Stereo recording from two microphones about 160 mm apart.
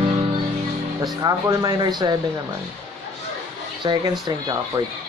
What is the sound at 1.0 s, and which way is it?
Speech, 25° right (ahead or behind).